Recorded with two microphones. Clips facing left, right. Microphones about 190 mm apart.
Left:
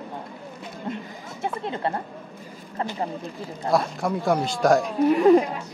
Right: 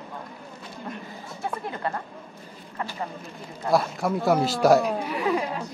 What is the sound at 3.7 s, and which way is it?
Speech, centre (ahead or behind).